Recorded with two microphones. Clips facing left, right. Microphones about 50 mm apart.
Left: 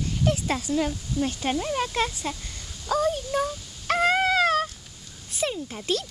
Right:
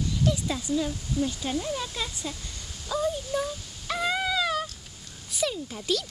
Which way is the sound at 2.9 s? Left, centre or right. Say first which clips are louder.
Left 4 dB; left.